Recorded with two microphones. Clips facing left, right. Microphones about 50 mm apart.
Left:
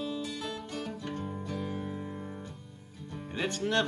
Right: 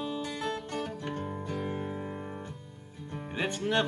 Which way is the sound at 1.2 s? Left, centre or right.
Right.